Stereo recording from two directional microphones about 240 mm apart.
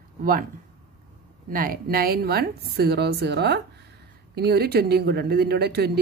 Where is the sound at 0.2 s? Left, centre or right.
Right.